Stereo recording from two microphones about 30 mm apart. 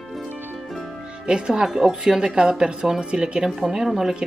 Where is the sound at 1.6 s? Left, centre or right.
Centre.